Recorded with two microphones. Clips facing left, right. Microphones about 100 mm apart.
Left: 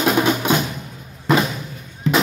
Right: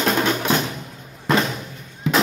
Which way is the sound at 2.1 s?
5° right (ahead or behind).